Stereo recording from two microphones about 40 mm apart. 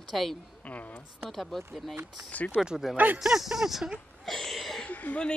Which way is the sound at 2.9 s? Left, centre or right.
Right.